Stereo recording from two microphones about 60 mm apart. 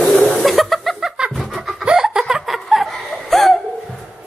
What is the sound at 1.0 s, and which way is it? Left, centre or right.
Laughter, centre.